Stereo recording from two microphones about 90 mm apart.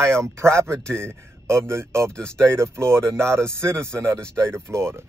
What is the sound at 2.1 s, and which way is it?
Speech, 10° left (ahead or behind).